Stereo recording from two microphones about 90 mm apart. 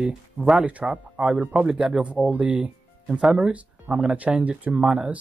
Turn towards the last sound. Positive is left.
turn(degrees=-10)  # may be behind; listen again after turning